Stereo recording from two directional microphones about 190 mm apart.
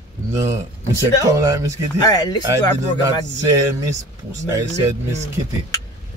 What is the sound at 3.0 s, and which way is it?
Speech, 15° right (ahead or behind).